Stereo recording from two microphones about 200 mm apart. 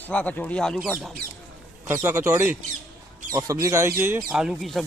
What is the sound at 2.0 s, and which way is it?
Speech, 10° right (ahead or behind).